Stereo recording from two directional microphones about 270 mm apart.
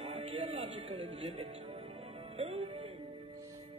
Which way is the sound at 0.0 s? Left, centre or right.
Right.